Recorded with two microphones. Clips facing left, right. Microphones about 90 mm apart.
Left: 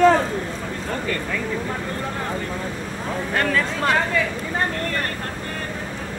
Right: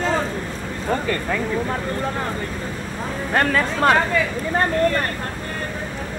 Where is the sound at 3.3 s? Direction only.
50° right (ahead or behind).